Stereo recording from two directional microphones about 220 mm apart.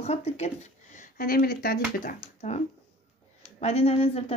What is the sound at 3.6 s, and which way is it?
Speech, 25° left (ahead or behind).